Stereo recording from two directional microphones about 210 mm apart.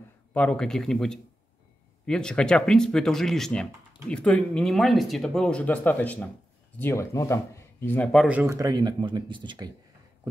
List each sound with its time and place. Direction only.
0.3 s speech: 5° left (ahead or behind); by 9.7 s 20° right (ahead or behind)